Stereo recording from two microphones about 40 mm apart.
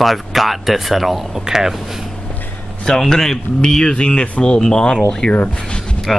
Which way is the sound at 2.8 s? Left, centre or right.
Centre.